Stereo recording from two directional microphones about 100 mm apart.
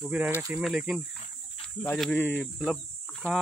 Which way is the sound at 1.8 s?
10° left (ahead or behind).